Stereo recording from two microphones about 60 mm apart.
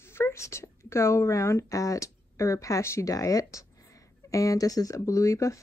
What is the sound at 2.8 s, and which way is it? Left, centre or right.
Speech, left.